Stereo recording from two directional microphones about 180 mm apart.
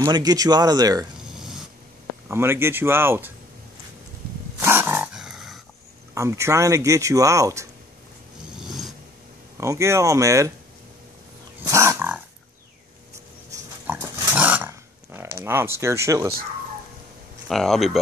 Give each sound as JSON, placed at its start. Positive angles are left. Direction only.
{"t": 0.0, "sound": "speech", "side_deg": -20}
{"t": 1.3, "sound": "a sound", "side_deg": 0}
{"t": 2.2, "sound": "speech", "side_deg": -15}
{"t": 4.6, "sound": "dog", "side_deg": -15}
{"t": 6.1, "sound": "speech", "side_deg": -15}
{"t": 8.5, "sound": "a sound", "side_deg": 0}
{"t": 9.6, "sound": "speech", "side_deg": -15}
{"t": 11.6, "sound": "wild animals", "side_deg": -15}
{"t": 13.6, "sound": "dog", "side_deg": -15}
{"t": 17.5, "sound": "speech", "side_deg": 0}